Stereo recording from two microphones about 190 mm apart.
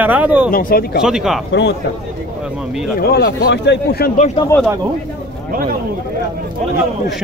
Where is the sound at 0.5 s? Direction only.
50° left (ahead or behind).